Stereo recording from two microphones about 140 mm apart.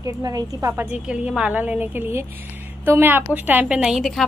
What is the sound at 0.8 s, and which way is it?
A woman's voice, 5° right (ahead or behind).